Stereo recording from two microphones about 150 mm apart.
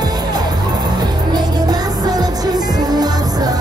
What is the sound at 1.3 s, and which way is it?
Music, 25° right (ahead or behind).